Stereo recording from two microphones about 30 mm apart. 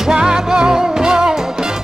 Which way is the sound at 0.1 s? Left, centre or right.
Right.